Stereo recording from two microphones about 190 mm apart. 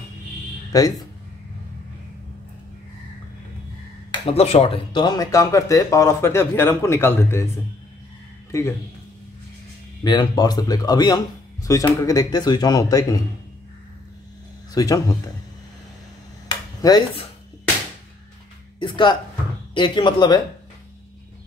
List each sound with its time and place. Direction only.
0.7 s speech: 20° left (ahead or behind)
4.3 s speech: 30° left (ahead or behind); by 7.4 s 15° left (ahead or behind)
8.5 s speech: 15° left (ahead or behind)
10.0 s speech: 25° left (ahead or behind)
14.7 s speech: 20° left (ahead or behind)
16.4 s dishes: 20° left (ahead or behind)
18.8 s speech: 25° left (ahead or behind)